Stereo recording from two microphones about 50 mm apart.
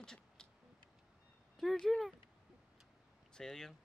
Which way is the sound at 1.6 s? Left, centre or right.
Centre.